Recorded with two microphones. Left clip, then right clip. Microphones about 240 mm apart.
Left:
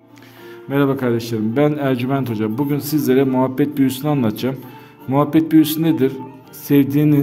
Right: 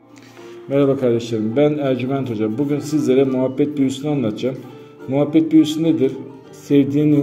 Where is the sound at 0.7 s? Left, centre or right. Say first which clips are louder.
Right 2 dB; left.